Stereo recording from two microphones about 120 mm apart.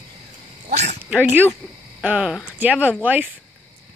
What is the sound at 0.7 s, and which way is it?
Speech, 70° right (ahead or behind).